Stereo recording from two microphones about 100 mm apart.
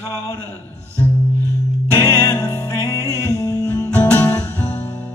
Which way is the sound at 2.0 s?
30° left (ahead or behind).